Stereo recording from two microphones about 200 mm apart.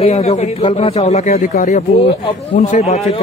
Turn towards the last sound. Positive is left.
turn(degrees=35)  # may be behind; listen again after turning